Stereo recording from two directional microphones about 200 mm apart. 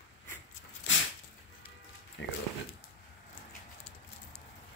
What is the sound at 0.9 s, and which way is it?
Dog, 65° left (ahead or behind).